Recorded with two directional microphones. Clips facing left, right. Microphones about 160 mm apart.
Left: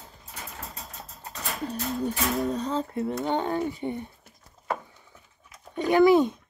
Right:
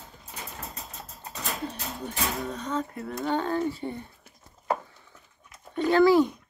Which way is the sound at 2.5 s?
30° left (ahead or behind).